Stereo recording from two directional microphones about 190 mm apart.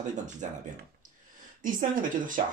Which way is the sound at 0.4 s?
40° right (ahead or behind).